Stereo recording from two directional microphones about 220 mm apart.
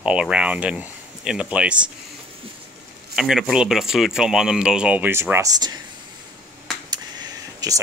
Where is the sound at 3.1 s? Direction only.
Centre (ahead or behind); by 5.8 s 15° right (ahead or behind).